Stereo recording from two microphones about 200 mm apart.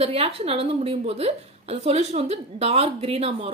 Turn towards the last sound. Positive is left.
turn(degrees=-30)  # may be behind; listen again after turning